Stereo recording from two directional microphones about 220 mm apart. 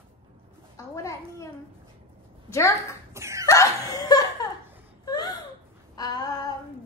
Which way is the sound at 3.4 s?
15° left (ahead or behind).